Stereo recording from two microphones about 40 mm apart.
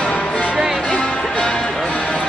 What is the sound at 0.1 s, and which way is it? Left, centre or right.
Music, left.